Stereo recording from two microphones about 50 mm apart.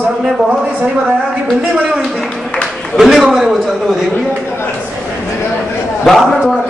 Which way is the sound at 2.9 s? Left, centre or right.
Centre.